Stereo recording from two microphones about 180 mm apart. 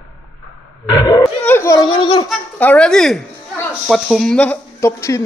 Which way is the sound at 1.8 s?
25° left (ahead or behind).